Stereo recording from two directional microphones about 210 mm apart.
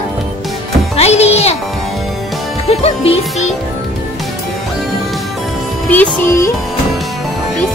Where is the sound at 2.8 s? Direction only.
30° left (ahead or behind).